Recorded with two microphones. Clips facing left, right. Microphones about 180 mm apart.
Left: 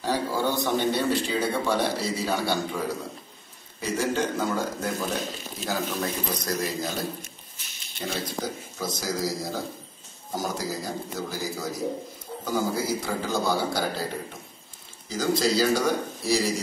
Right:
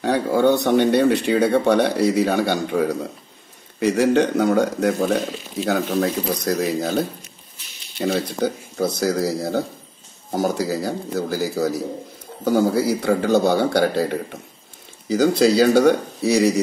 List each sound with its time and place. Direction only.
0.0 s speech: 65° right (ahead or behind)